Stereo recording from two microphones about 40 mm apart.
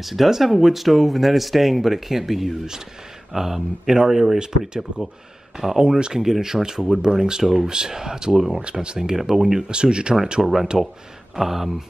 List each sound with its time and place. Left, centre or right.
0.0 s speech: centre; by 10.1 s right
10.4 s speech: centre